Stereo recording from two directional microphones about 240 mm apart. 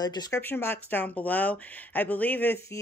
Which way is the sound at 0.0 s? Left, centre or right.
Centre.